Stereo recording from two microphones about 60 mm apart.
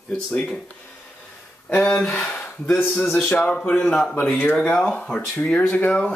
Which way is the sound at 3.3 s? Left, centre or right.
Left.